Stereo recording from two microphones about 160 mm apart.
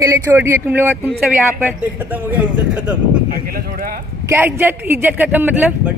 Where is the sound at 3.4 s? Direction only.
65° right (ahead or behind).